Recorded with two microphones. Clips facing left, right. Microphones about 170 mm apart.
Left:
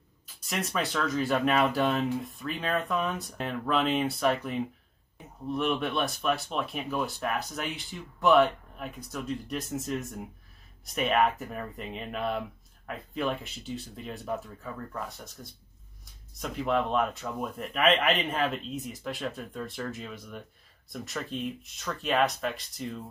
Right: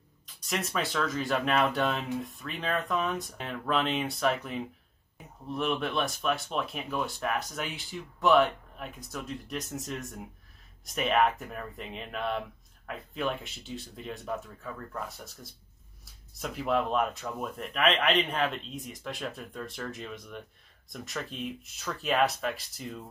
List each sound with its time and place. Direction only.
0.4 s speech: centre (ahead or behind)